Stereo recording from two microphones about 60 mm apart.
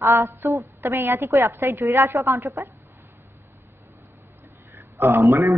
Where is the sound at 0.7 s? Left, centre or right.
Right.